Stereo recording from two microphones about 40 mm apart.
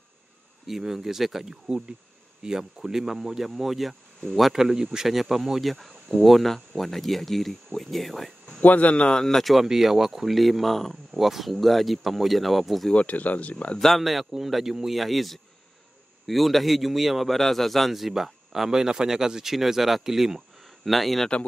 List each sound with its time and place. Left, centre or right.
0.7 s speech: centre
4.6 s a man's voice: centre
8.6 s speech: left
9.1 s speech: centre
9.5 s a man's voice: centre
12.9 s speech: left
13.7 s a man's voice: centre